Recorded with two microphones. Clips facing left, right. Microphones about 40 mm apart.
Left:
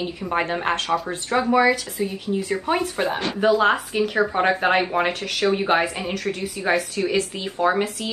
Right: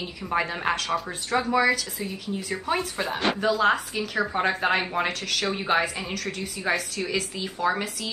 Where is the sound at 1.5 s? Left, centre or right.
Centre.